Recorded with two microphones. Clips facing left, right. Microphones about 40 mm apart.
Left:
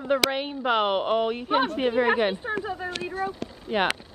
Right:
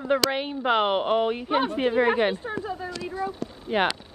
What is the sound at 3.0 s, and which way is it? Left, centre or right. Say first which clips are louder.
Speech: even; left.